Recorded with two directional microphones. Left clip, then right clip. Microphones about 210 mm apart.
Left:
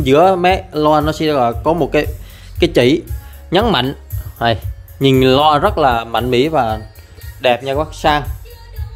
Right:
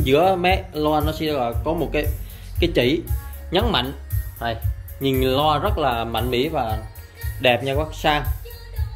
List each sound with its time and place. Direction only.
0.0 s speech: 35° left (ahead or behind)
7.4 s speech: 30° left (ahead or behind)